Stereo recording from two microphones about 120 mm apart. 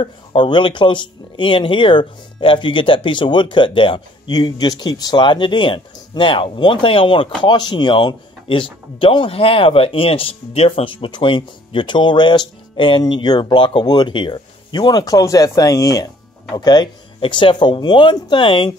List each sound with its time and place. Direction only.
0.0 s speech: 45° left (ahead or behind)